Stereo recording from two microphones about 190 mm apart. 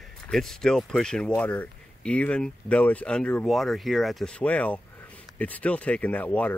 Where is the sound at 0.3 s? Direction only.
Centre (ahead or behind).